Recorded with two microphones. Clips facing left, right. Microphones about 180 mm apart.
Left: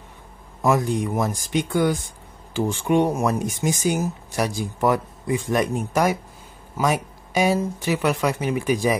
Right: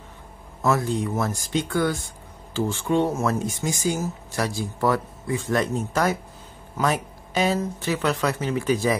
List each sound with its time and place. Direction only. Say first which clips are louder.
0.6 s speech: left 2 dB; 15° left (ahead or behind)